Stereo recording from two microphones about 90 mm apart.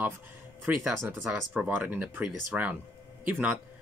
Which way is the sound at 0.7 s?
20° right (ahead or behind).